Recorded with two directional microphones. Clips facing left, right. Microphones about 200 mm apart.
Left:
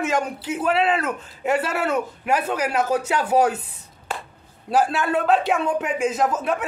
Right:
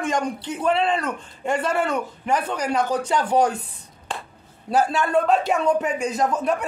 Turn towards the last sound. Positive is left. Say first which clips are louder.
# even
turn(degrees=0)  # may be behind; listen again after turning